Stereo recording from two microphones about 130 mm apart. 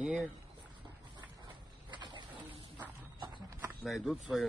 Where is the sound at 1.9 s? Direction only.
35° right (ahead or behind).